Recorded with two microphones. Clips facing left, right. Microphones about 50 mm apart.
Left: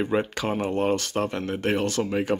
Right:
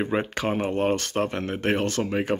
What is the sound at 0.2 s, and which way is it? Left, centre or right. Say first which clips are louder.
Speech: right 1 dB; right.